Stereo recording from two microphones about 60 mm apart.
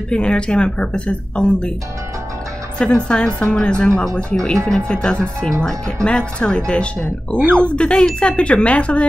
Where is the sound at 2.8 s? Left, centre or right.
Centre.